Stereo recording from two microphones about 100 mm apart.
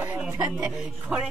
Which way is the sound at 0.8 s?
5° right (ahead or behind).